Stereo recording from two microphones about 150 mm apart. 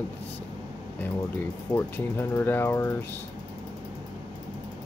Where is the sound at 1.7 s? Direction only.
15° left (ahead or behind).